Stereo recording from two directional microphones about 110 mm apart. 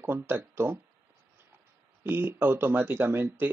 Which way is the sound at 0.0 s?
20° right (ahead or behind).